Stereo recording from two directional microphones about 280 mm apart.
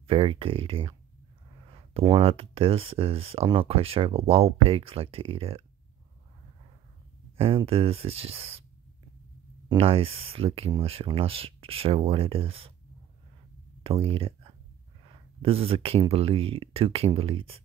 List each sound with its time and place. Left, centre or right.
0.0 s speech: centre
7.3 s speech: centre
9.7 s speech: centre
13.8 s speech: centre